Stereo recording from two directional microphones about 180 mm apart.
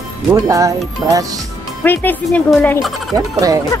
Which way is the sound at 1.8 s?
10° left (ahead or behind).